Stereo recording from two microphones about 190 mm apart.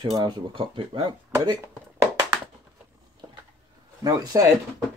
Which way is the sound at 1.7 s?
5° right (ahead or behind).